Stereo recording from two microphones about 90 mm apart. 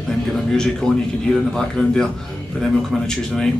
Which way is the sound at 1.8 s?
20° left (ahead or behind).